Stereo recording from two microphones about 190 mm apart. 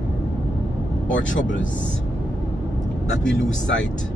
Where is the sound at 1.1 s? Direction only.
80° left.